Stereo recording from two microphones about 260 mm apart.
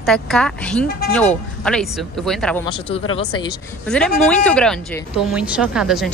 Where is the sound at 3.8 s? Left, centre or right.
Centre.